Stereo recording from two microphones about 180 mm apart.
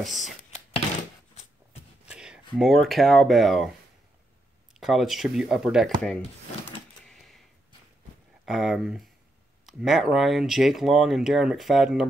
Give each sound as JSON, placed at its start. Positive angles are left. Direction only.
{"t": 0.0, "sound": "speech", "side_deg": 0}
{"t": 2.0, "sound": "a sound", "side_deg": -5}
{"t": 2.5, "sound": "speech", "side_deg": 0}
{"t": 4.7, "sound": "speech", "side_deg": 0}
{"t": 7.1, "sound": "a sound", "side_deg": 0}
{"t": 8.5, "sound": "speech", "side_deg": 0}